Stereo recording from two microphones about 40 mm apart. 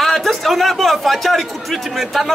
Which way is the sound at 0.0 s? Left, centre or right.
Centre.